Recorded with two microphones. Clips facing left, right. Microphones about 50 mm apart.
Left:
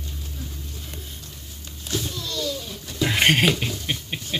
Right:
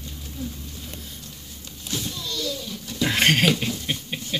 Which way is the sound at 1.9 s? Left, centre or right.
Left.